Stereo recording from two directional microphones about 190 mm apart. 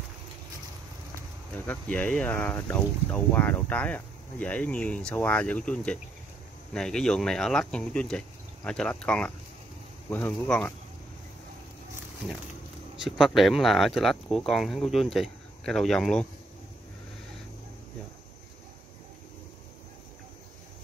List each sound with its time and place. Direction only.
1.7 s speech: 5° left (ahead or behind)
13.0 s speech: centre (ahead or behind)